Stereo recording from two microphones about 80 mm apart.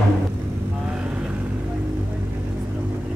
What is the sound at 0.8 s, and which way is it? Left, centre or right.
Vehicle, centre.